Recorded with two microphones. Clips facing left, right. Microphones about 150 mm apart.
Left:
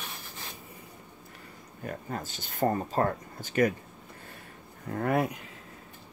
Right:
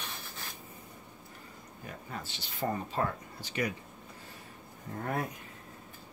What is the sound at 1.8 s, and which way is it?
Speech, 45° left (ahead or behind).